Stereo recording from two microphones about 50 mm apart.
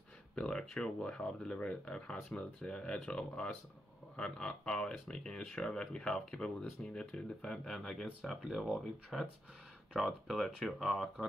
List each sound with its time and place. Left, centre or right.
0.4 s speech: centre